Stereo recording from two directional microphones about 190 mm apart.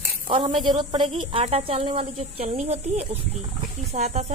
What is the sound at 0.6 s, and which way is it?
Speech, 25° right (ahead or behind).